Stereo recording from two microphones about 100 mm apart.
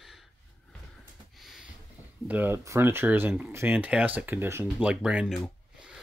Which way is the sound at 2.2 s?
20° right (ahead or behind).